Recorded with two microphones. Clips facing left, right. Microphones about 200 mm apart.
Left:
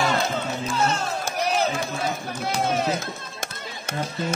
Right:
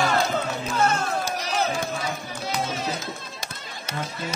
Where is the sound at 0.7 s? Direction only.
55° right (ahead or behind).